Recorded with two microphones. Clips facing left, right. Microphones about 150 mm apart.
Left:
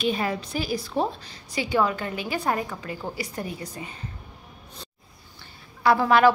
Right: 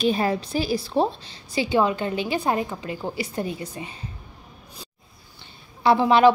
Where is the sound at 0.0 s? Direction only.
35° right (ahead or behind).